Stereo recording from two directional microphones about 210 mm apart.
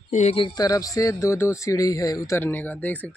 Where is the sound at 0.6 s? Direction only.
15° left (ahead or behind).